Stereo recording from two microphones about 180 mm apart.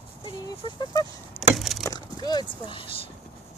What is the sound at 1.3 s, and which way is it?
Wood, centre (ahead or behind).